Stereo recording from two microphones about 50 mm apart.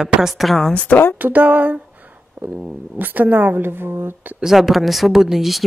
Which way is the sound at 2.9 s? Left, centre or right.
Right.